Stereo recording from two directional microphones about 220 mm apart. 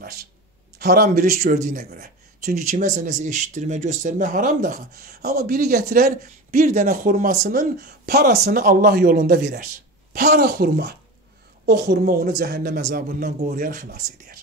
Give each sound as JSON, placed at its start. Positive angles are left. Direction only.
{"t": 0.7, "sound": "a man's voice", "side_deg": -45}